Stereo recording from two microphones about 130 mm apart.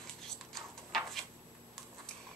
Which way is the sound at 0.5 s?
Centre (ahead or behind).